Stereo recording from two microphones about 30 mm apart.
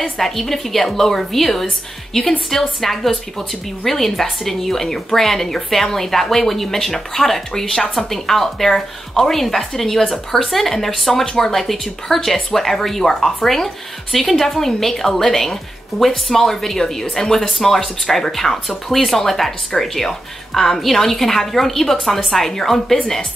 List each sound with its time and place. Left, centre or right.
0.2 s a woman's voice: centre
2.8 s a woman's voice: centre
7.9 s a woman's voice: centre